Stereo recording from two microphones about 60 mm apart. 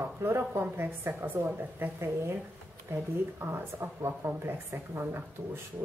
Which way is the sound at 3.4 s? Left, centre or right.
Right.